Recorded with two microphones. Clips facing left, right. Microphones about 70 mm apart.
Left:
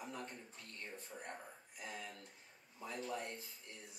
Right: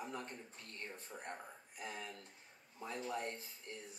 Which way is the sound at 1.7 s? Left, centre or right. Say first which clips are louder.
Right 2 dB; right.